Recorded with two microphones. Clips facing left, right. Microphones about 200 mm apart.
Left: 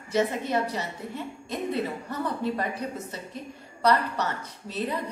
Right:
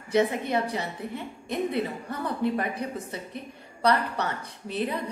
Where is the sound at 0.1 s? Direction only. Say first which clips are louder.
Right 1 dB; 15° right (ahead or behind).